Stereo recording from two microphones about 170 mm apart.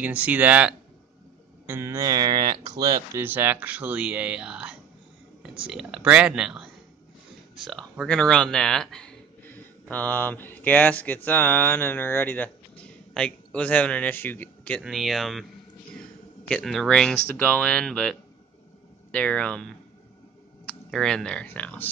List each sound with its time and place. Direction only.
0.0 s speech: 10° right (ahead or behind)
3.3 s speech: 10° right (ahead or behind); by 14.8 s 10° left (ahead or behind)
14.8 s speech: centre (ahead or behind)
16.4 s speech: 5° left (ahead or behind)
19.1 s speech: 5° left (ahead or behind)